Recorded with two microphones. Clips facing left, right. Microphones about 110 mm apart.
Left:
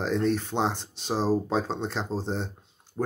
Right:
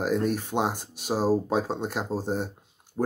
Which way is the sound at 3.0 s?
20° right (ahead or behind).